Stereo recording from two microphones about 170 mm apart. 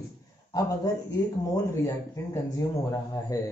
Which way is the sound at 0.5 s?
20° left (ahead or behind).